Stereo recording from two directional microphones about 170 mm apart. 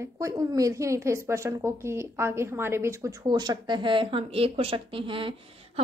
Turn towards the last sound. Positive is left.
turn(degrees=-30)  # may be behind; listen again after turning